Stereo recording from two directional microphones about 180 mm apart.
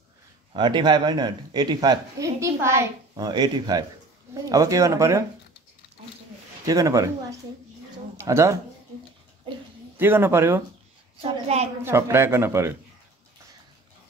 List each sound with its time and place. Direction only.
0.5 s speech: 25° right (ahead or behind)
6.6 s speech: 20° right (ahead or behind)
9.9 s speech: 10° right (ahead or behind)
11.4 s a woman's voice: 35° right (ahead or behind)
11.8 s speech: 15° right (ahead or behind)